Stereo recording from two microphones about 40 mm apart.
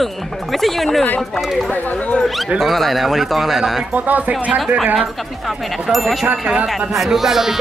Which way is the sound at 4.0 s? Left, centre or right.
Right.